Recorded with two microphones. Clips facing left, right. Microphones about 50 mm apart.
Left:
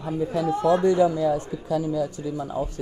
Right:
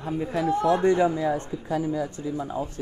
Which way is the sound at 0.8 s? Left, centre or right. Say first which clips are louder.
Left 2 dB; right.